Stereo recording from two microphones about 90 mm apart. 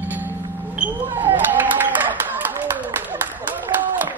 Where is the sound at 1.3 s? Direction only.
20° right (ahead or behind).